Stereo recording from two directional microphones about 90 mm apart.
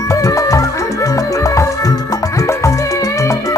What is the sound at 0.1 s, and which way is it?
Music, 40° left (ahead or behind).